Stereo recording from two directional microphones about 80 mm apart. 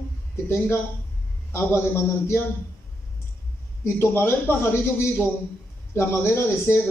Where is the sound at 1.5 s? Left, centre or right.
Left.